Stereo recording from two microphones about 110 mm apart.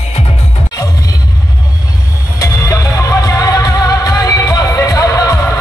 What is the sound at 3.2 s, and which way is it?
Music, 35° left (ahead or behind).